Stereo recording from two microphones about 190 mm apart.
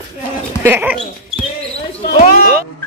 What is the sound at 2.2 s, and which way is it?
Speech, 50° left (ahead or behind).